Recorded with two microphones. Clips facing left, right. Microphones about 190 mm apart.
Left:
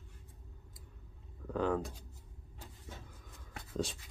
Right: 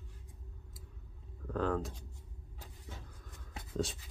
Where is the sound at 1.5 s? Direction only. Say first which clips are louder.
Left 1 dB; centre (ahead or behind).